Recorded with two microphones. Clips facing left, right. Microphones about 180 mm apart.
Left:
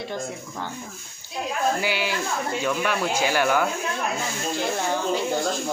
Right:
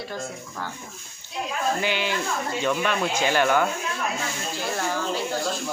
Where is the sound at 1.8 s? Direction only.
10° left (ahead or behind).